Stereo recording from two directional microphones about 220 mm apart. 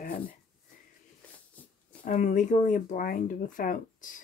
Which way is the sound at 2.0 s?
35° left (ahead or behind).